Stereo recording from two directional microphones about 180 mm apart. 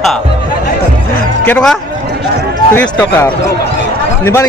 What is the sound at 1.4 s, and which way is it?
A man's voice, 5° left (ahead or behind).